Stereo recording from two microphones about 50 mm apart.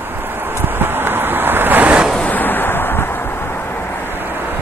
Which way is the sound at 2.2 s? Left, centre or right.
Left.